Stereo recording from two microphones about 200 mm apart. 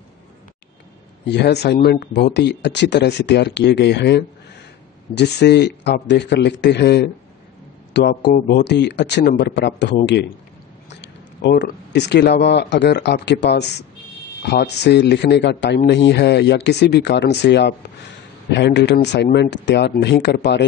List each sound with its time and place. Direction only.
1.2 s speech: 55° left (ahead or behind)